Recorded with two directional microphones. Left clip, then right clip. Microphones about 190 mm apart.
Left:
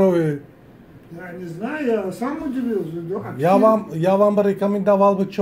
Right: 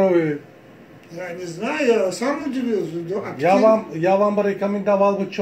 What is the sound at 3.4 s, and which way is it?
Speech, 55° left (ahead or behind).